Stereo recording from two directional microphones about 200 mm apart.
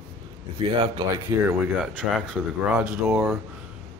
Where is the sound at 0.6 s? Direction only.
20° right (ahead or behind).